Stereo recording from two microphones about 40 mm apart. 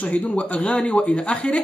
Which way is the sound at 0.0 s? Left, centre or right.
Left.